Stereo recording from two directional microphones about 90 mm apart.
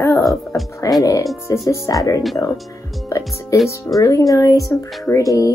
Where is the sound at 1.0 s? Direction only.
40° left (ahead or behind).